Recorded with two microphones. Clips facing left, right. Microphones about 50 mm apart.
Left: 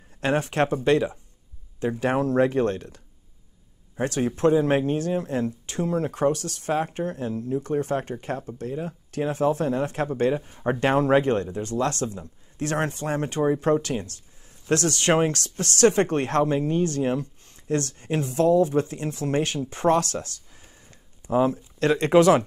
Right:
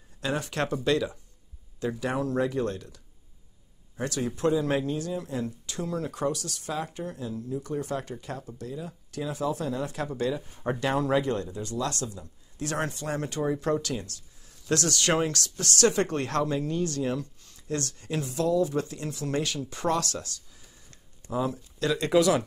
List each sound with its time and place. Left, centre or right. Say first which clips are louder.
0.2 s speech: left 6 dB; left
4.0 s speech: left 5 dB; left
10.5 s speech: left 5 dB; left
10.8 s speech: left 6 dB; left